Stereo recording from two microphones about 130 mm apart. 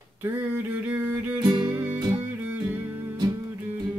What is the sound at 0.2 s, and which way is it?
Music, 15° right (ahead or behind).